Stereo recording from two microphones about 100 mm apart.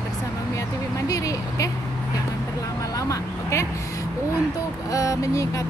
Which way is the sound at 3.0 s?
30° left (ahead or behind).